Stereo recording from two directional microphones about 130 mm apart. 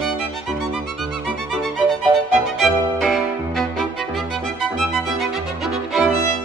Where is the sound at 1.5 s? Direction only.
Centre (ahead or behind).